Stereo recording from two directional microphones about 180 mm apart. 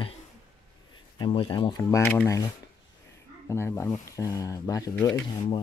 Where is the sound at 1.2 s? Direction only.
25° left (ahead or behind).